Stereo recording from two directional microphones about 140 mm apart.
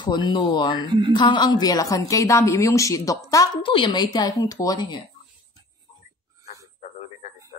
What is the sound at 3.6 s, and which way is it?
Speech, 35° left (ahead or behind).